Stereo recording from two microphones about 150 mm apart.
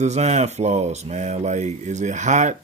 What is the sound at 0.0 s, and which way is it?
Speech, 45° right (ahead or behind).